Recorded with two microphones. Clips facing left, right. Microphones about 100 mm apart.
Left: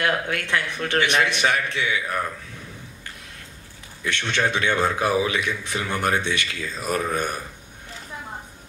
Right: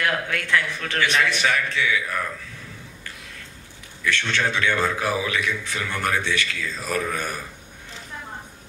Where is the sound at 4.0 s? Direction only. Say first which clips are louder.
Even; 20° left (ahead or behind).